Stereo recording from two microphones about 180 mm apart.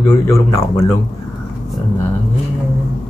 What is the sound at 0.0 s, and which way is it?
Speech, 15° left (ahead or behind).